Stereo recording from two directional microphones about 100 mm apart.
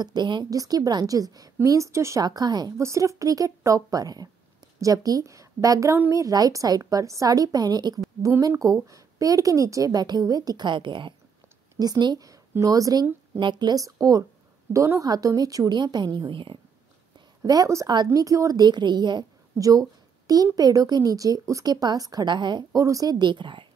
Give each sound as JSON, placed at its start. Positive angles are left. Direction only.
{"t": 0.0, "sound": "a woman's voice", "side_deg": -45}
{"t": 2.2, "sound": "a woman's voice", "side_deg": -45}
{"t": 2.8, "sound": "a woman's voice", "side_deg": -30}
{"t": 11.8, "sound": "a woman's voice", "side_deg": -45}
{"t": 13.4, "sound": "a woman's voice", "side_deg": -50}
{"t": 17.4, "sound": "a woman's voice", "side_deg": -35}
{"t": 22.8, "sound": "a woman's voice", "side_deg": -35}